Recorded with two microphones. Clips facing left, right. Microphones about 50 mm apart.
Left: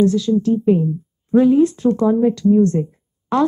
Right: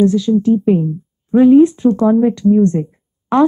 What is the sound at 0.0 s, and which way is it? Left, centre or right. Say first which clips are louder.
A woman's voice: right 3 dB; right.